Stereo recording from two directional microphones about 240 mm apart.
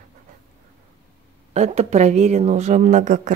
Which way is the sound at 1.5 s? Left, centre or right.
Right.